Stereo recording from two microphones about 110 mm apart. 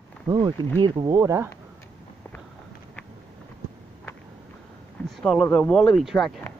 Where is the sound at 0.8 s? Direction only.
45° right (ahead or behind).